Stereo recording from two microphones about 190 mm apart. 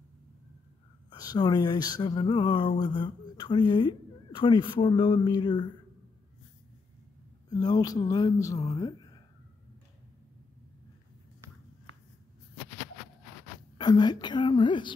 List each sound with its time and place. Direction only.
1.1 s speech: 20° left (ahead or behind)
7.4 s speech: 20° left (ahead or behind)
13.7 s speech: 20° left (ahead or behind)